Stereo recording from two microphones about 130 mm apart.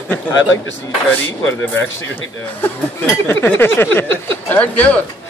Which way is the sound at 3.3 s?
15° left (ahead or behind).